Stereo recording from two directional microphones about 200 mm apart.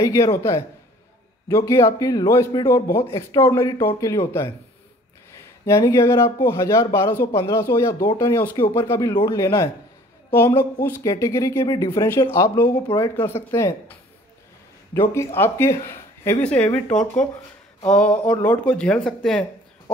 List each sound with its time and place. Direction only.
0.0 s speech: 15° left (ahead or behind)
5.7 s speech: 15° left (ahead or behind)
15.0 s speech: 10° left (ahead or behind)